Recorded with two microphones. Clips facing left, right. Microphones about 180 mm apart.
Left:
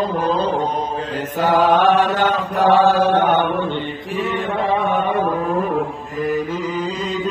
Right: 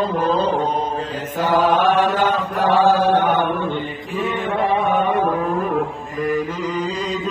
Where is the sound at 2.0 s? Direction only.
80° left.